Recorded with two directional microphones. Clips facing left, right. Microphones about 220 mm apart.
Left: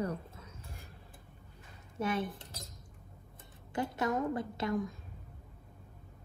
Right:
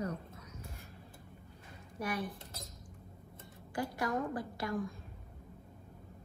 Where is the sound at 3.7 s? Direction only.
25° left (ahead or behind).